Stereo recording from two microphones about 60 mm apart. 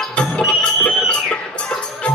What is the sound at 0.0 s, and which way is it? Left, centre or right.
Music, centre.